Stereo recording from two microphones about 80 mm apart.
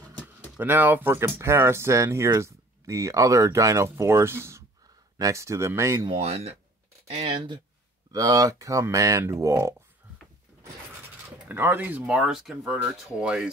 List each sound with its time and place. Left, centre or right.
0.6 s speech: right
8.1 s speech: right
11.4 s speech: right
12.0 s speech: centre